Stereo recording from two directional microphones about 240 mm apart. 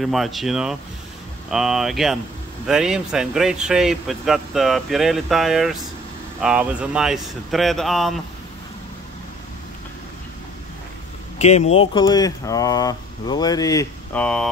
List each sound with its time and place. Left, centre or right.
0.0 s speech: centre
11.3 s speech: left; by 14.5 s centre